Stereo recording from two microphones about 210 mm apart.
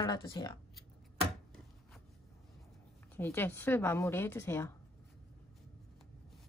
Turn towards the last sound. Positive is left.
turn(degrees=10)  # may be behind; listen again after turning